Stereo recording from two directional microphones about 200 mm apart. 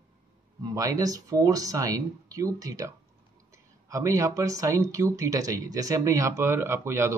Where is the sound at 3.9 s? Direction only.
15° right (ahead or behind).